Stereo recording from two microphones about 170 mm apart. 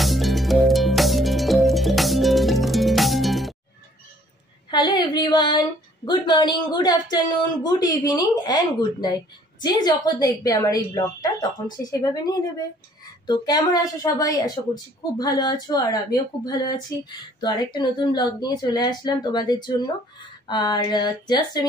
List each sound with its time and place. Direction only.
0.0 s music: centre (ahead or behind)
4.6 s a sound: 25° left (ahead or behind)
6.0 s speech: 25° left (ahead or behind)